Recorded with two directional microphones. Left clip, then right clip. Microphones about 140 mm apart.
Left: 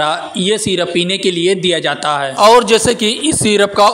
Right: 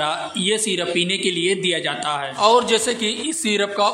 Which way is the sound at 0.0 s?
35° left (ahead or behind).